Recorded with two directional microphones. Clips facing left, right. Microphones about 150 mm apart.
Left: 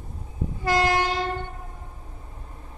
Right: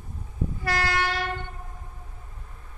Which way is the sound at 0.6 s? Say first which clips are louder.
Left 6 dB; 20° left (ahead or behind).